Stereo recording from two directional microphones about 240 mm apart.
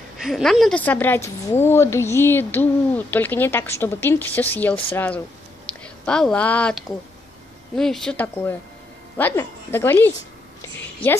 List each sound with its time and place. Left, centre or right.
0.2 s a woman's voice: centre